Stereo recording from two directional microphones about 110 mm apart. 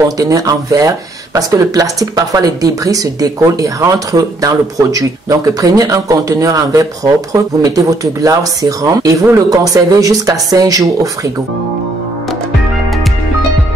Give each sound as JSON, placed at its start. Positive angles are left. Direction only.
{"t": 0.2, "sound": "speech", "side_deg": -30}